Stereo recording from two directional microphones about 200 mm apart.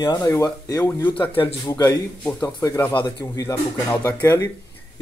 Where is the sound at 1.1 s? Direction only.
25° left (ahead or behind).